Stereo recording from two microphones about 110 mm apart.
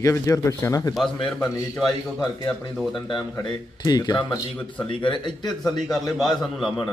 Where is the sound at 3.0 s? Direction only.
40° left (ahead or behind).